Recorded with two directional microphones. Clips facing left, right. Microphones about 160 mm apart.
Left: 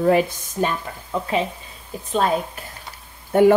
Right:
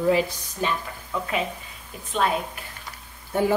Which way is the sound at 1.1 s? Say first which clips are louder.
Left 5 dB; 30° left (ahead or behind).